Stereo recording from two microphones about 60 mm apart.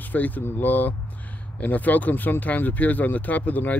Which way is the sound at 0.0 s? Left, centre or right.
Left.